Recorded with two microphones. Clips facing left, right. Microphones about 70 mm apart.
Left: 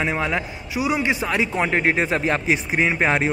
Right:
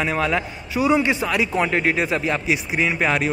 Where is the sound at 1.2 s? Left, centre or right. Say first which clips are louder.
Right 1 dB; left.